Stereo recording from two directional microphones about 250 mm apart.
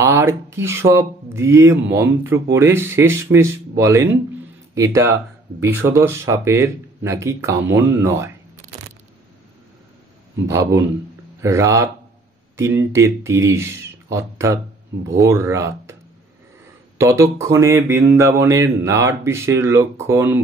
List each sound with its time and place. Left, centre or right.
0.0 s speech: centre
10.4 s speech: centre
17.0 s speech: centre